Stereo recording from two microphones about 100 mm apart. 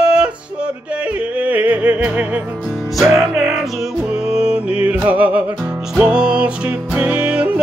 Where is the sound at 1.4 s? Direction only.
15° right (ahead or behind).